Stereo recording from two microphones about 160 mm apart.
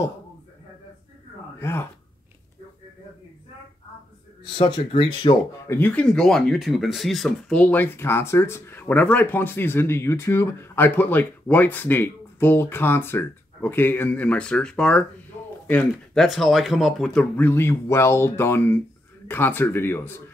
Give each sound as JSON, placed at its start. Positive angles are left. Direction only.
{"t": 1.6, "sound": "speech", "side_deg": 15}
{"t": 4.6, "sound": "speech", "side_deg": 30}
{"t": 5.7, "sound": "speech", "side_deg": 10}